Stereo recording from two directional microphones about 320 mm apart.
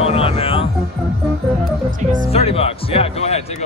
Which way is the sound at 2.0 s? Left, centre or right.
Right.